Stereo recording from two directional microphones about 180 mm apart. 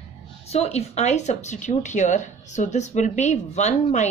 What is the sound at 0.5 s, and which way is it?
Speech, 35° left (ahead or behind).